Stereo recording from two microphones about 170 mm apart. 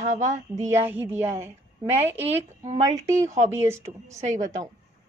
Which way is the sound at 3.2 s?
45° right (ahead or behind).